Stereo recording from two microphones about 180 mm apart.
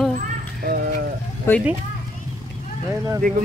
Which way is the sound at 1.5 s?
15° left (ahead or behind).